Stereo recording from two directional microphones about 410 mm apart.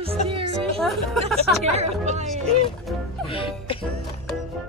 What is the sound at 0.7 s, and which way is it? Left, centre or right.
Speech, centre.